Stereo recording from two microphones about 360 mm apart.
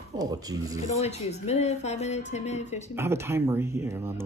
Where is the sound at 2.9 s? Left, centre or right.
Centre.